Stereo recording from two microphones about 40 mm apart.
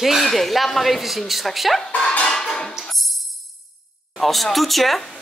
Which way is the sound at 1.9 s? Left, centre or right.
Left.